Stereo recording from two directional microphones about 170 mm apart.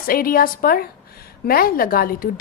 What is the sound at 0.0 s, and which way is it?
A woman's voice, 60° left (ahead or behind).